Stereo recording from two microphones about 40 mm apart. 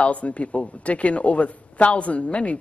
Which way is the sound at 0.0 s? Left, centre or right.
Left.